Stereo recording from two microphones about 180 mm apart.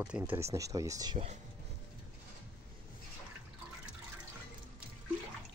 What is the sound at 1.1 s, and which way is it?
Speech, 35° right (ahead or behind).